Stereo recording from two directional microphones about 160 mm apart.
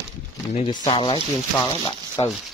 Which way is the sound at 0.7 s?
30° left (ahead or behind).